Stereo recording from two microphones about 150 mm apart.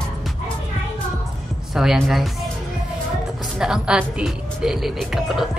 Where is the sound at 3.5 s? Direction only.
5° right (ahead or behind).